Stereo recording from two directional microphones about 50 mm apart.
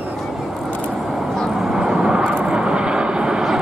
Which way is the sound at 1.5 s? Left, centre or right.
Centre.